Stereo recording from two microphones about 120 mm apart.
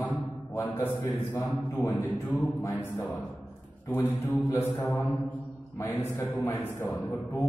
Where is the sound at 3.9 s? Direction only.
15° left (ahead or behind).